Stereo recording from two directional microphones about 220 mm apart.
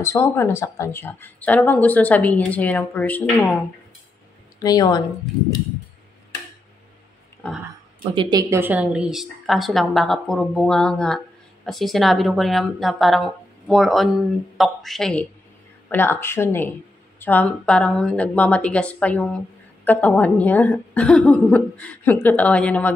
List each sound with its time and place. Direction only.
0.0 s a woman's voice: 10° left (ahead or behind)
4.6 s a woman's voice: 20° left (ahead or behind)
8.1 s a woman's voice: 20° right (ahead or behind); by 22.9 s 5° left (ahead or behind)